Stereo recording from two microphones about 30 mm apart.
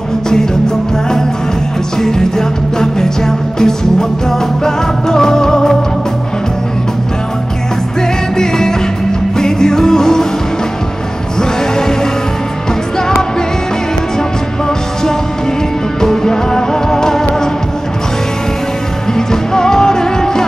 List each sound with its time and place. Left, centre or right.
2.0 s music: centre
8.4 s music: centre
11.3 s music: left
16.0 s music: centre
19.1 s music: centre